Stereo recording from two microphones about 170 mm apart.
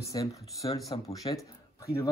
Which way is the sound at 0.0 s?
20° left (ahead or behind).